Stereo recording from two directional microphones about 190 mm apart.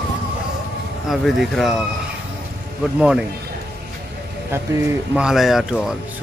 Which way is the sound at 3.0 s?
5° right (ahead or behind).